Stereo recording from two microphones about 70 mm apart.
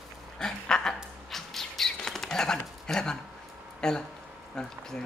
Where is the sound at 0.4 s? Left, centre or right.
Centre.